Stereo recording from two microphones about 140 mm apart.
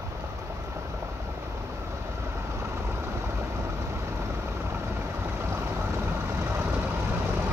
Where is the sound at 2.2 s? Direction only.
20° right (ahead or behind).